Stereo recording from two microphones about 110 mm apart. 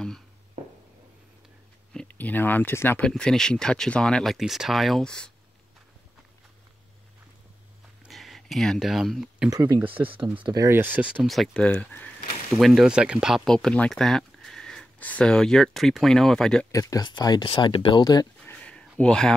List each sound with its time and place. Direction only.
0.6 s a sound: 90° right
2.0 s speech: 15° left (ahead or behind)
3.0 s speech: 5° left (ahead or behind)
8.1 s speech: centre (ahead or behind)
9.5 s speech: 35° right (ahead or behind)
10.0 s speech: 50° right (ahead or behind)
10.4 s speech: 35° right (ahead or behind)
10.7 s speech: 15° right (ahead or behind)
11.2 s speech: centre (ahead or behind)
12.5 s speech: centre (ahead or behind)
13.5 s speech: 5° left (ahead or behind)
16.7 s speech: 35° left (ahead or behind)
18.4 s a sound: 10° left (ahead or behind)